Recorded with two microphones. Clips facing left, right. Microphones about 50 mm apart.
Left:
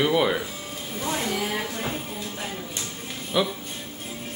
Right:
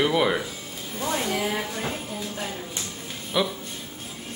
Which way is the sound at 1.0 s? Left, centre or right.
Centre.